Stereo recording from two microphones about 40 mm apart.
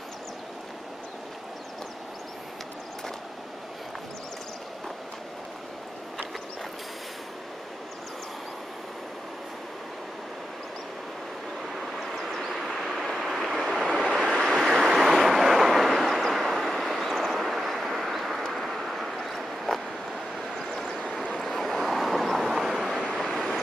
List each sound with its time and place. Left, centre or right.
11.7 s vehicle: centre
14.0 s waves: right; by 18.4 s centre
18.4 s a sound: centre
20.7 s vehicle: centre
21.0 s vehicle: left
21.3 s vehicle: centre
22.8 s vehicle: right
23.2 s vehicle: centre